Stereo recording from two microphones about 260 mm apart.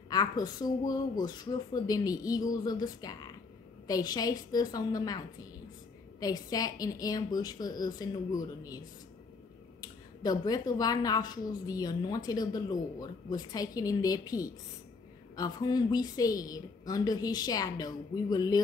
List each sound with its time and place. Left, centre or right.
0.1 s speech: centre